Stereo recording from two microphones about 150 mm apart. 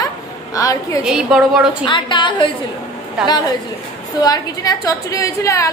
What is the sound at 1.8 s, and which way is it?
Speech, 30° left (ahead or behind).